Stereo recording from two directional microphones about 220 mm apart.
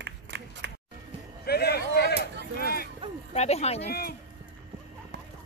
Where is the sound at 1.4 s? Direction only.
45° left (ahead or behind).